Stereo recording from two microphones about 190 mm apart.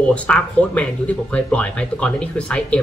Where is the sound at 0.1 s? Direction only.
5° left (ahead or behind).